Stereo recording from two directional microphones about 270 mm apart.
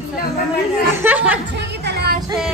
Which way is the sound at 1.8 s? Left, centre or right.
Right.